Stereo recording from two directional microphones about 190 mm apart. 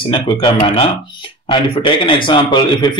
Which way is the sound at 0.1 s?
30° left (ahead or behind).